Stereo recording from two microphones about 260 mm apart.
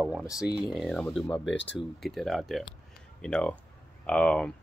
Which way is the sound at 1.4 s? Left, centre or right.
Left.